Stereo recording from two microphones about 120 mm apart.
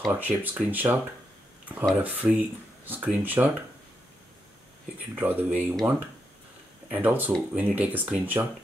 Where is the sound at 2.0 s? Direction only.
15° right (ahead or behind).